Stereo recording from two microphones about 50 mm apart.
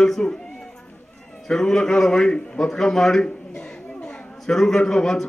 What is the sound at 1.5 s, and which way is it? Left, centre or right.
A man's voice, centre.